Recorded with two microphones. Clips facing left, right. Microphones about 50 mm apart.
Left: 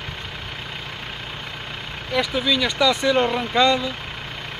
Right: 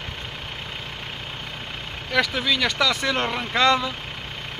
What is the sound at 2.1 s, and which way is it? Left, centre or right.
Speech, right.